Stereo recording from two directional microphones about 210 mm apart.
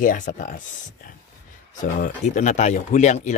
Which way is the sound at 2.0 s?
35° left (ahead or behind).